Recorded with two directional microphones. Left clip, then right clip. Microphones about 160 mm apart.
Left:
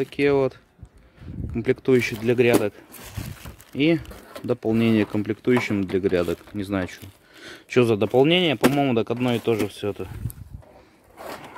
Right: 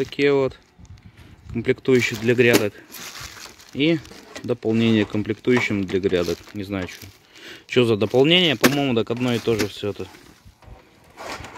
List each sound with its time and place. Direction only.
0.0 s speech: 5° left (ahead or behind)
2.2 s speech: 10° right (ahead or behind)
3.7 s speech: 5° left (ahead or behind)
6.5 s speech: 25° left (ahead or behind)
7.3 s a sound: 20° left (ahead or behind)
7.8 s speech: centre (ahead or behind)